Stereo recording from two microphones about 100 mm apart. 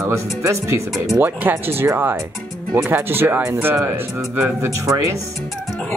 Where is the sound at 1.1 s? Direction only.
20° right (ahead or behind).